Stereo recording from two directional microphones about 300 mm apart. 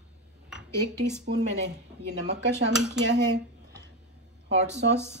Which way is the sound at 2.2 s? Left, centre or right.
Right.